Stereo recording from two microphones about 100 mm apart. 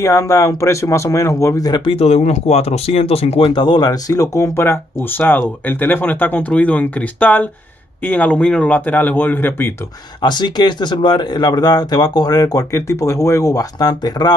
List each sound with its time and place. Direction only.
0.0 s speech: 35° left (ahead or behind)
1.7 s speech: 65° left (ahead or behind); by 9.8 s 20° left (ahead or behind)
10.2 s speech: 45° left (ahead or behind)